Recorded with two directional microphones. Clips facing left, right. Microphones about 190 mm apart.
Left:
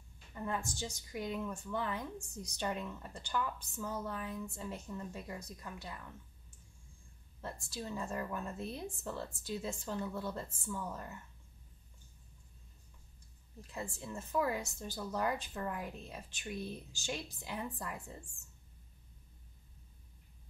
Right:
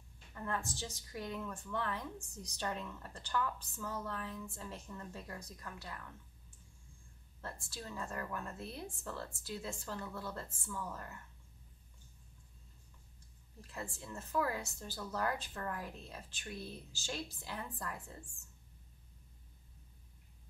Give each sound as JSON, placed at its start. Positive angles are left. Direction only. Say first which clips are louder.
{"t": 0.3, "sound": "a woman's voice", "louder": "left 2 dB", "side_deg": 15}
{"t": 7.4, "sound": "a woman's voice", "louder": "left 4 dB", "side_deg": 15}
{"t": 13.6, "sound": "a woman's voice", "louder": "left 2 dB", "side_deg": 15}